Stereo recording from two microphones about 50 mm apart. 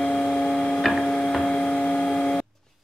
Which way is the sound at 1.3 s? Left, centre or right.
Centre.